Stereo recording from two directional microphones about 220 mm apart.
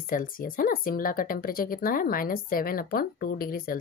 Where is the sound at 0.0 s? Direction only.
40° left (ahead or behind).